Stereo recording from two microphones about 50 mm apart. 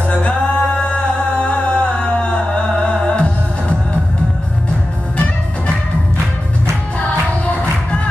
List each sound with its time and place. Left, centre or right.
0.1 s music: left